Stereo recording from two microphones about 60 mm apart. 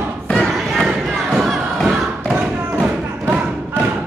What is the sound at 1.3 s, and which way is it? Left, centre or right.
Thump, centre.